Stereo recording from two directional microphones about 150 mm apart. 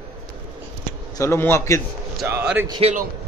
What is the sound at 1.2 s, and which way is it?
Speech, 15° left (ahead or behind).